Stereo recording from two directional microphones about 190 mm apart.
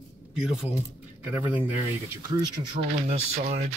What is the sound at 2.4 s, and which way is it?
Speech, 25° right (ahead or behind).